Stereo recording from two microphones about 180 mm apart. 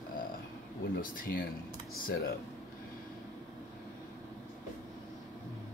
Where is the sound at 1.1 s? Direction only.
50° left (ahead or behind).